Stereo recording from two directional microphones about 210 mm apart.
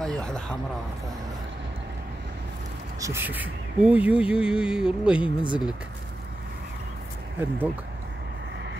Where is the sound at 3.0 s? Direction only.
10° right (ahead or behind).